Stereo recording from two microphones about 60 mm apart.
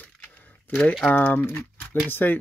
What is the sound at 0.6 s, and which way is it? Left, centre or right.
Speech, left.